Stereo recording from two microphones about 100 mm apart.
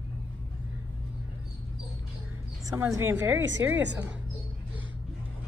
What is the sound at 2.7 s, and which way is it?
Speech, 25° right (ahead or behind).